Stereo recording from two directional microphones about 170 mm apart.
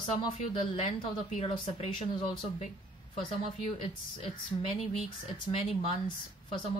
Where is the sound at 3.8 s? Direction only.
35° left (ahead or behind).